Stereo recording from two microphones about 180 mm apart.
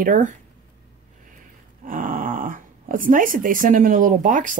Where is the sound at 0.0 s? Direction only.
50° right (ahead or behind).